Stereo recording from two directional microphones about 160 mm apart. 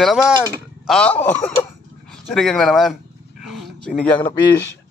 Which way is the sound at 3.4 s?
Centre (ahead or behind).